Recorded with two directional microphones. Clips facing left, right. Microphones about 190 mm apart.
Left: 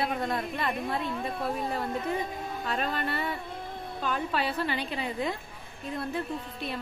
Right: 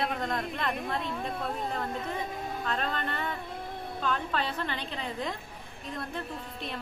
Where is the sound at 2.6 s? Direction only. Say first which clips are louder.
Left 2 dB; 10° left (ahead or behind).